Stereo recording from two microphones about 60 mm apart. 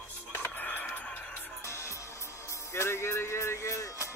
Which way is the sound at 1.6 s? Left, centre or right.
Left.